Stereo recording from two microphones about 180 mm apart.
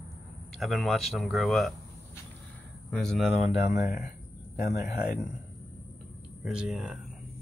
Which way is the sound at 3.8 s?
55° left (ahead or behind).